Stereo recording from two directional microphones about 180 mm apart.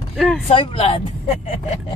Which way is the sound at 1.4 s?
40° left (ahead or behind).